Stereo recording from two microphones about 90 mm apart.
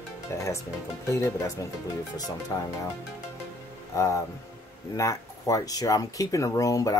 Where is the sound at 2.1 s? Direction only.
45° left (ahead or behind).